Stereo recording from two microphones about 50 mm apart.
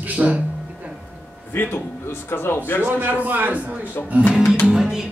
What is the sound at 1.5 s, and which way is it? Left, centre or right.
Speech, left.